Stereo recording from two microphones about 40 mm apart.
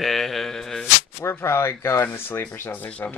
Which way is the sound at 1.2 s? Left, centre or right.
Left.